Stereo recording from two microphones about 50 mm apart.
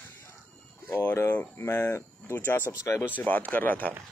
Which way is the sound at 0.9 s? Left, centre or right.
Left.